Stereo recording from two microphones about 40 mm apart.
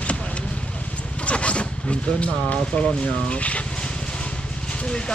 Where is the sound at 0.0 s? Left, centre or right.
Left.